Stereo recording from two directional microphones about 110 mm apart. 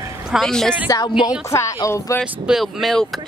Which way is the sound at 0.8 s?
35° left (ahead or behind).